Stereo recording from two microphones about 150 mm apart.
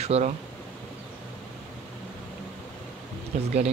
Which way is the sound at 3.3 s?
55° right (ahead or behind).